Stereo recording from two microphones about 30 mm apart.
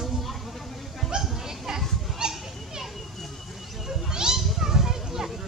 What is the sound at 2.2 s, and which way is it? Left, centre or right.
Children playing, centre.